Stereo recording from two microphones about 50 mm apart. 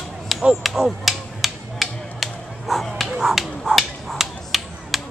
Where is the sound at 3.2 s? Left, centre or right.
Centre.